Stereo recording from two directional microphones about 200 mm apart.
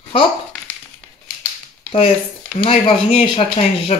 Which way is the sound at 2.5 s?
30° left (ahead or behind).